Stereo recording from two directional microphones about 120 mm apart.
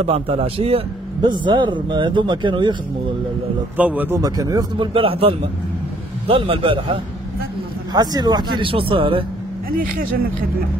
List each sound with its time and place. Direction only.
0.0 s a man's voice: 55° right (ahead or behind)
1.4 s speech: 40° right (ahead or behind)
3.7 s speech: 15° right (ahead or behind)
4.2 s speech: 30° right (ahead or behind)
4.9 s a man's voice: 50° right (ahead or behind)
7.9 s speech: 35° right (ahead or behind)